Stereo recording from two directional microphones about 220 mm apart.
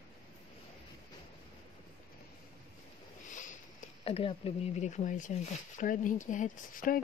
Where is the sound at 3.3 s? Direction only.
35° left (ahead or behind).